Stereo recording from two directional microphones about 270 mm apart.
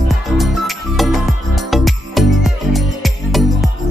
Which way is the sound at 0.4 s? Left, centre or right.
Centre.